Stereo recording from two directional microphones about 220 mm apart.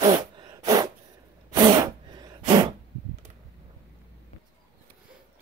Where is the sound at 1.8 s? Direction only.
20° right (ahead or behind).